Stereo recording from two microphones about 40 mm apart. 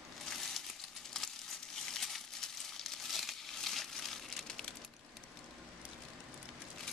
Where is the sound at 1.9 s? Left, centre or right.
Centre.